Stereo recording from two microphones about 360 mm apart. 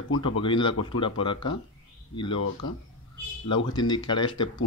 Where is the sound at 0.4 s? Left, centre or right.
Centre.